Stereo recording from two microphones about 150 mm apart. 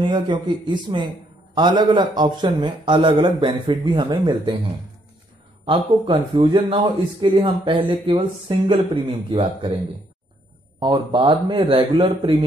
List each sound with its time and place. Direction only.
0.0 s a man's voice: 30° right (ahead or behind)
5.7 s a man's voice: 35° right (ahead or behind)
10.8 s a man's voice: 35° right (ahead or behind)